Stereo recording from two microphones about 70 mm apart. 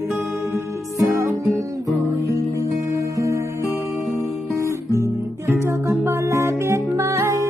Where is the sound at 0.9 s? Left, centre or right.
Right.